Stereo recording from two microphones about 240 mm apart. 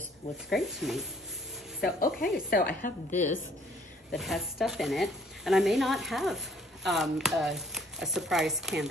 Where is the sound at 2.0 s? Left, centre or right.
Left.